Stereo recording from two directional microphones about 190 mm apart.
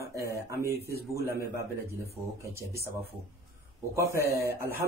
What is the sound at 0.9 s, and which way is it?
Speech, 55° right (ahead or behind).